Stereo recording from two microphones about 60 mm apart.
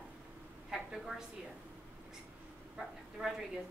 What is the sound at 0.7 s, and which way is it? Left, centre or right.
Speech, centre.